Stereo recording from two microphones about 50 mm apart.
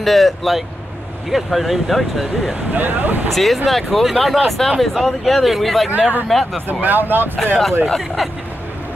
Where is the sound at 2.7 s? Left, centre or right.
Right.